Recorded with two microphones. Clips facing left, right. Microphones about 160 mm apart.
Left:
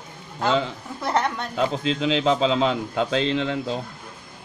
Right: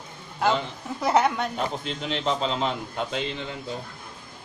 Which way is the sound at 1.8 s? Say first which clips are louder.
Left 7 dB; 90° left.